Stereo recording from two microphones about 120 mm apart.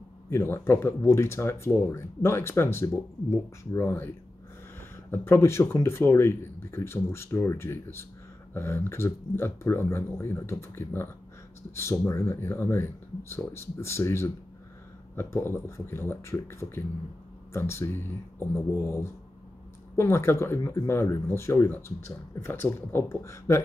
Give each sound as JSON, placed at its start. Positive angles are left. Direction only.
{"t": 0.3, "sound": "speech", "side_deg": 20}